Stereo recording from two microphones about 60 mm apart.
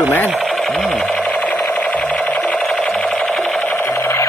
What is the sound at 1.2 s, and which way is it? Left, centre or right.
Alarm clock, left.